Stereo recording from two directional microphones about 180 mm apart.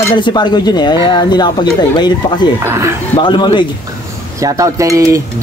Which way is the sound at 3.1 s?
25° left (ahead or behind).